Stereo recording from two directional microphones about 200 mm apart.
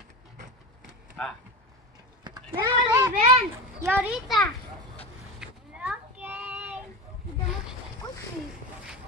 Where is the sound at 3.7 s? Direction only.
10° right (ahead or behind).